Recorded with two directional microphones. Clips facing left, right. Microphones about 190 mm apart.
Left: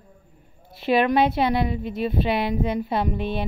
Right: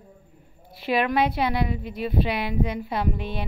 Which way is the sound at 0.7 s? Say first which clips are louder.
Left 4 dB; 25° left (ahead or behind).